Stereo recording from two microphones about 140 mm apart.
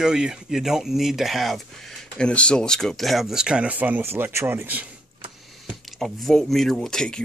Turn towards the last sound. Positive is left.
turn(degrees=5)  # may be behind; listen again after turning